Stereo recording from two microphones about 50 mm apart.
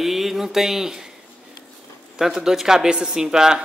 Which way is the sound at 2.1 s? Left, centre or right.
Centre.